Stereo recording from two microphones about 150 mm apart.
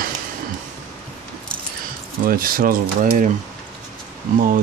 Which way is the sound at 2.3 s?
75° right (ahead or behind).